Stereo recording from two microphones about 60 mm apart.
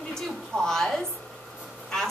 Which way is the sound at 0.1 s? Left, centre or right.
Centre.